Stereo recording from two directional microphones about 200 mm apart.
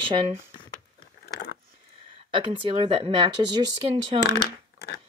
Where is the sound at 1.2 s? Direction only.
50° left (ahead or behind).